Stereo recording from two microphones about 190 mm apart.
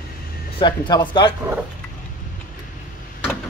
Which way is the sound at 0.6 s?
25° left (ahead or behind).